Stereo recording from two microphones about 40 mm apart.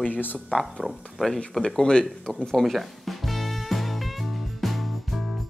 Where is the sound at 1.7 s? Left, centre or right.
Left.